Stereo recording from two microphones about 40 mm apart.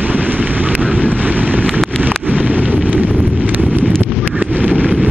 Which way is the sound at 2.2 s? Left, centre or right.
Right.